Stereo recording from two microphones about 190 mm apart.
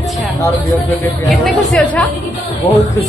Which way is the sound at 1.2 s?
5° left (ahead or behind).